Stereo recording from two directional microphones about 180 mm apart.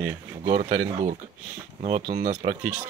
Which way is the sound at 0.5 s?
40° right (ahead or behind).